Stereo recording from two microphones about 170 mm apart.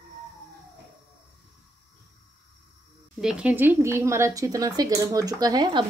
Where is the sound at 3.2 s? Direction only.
5° right (ahead or behind); by 5.9 s 25° right (ahead or behind).